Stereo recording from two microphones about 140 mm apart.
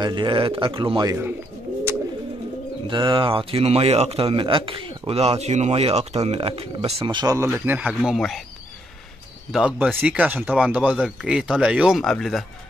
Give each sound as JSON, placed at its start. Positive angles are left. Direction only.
{"t": 0.0, "sound": "speech", "side_deg": -35}
{"t": 1.0, "sound": "speech", "side_deg": -20}
{"t": 2.9, "sound": "a man's voice", "side_deg": -35}
{"t": 7.3, "sound": "speech", "side_deg": -20}
{"t": 9.5, "sound": "speech", "side_deg": -5}